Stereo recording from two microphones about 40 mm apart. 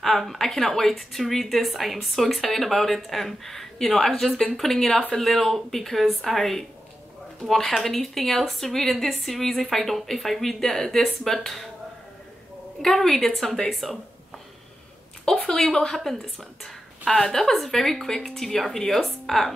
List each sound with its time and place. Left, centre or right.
0.0 s a woman's voice: centre
12.8 s a woman's voice: centre
15.2 s speech: centre